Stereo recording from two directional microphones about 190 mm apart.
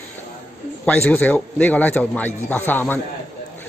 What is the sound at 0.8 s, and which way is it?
A man's voice, 10° left (ahead or behind).